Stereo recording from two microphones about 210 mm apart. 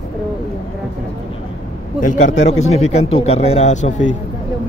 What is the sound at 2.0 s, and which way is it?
Speech, 35° left (ahead or behind).